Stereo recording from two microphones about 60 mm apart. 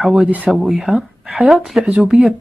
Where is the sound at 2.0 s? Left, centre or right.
Centre.